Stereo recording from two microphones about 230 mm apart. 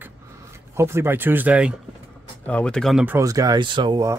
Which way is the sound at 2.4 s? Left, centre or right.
Centre.